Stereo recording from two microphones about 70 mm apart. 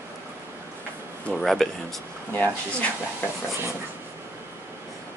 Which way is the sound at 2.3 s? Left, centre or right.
Left.